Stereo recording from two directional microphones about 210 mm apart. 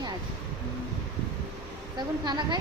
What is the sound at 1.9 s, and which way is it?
Speech, 20° right (ahead or behind).